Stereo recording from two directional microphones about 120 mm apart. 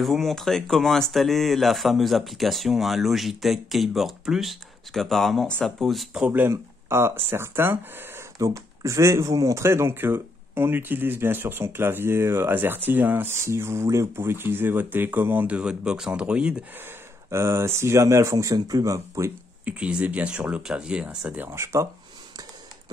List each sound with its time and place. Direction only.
0.0 s speech: centre (ahead or behind)
16.8 s speech: 25° right (ahead or behind)
19.6 s speech: 10° right (ahead or behind)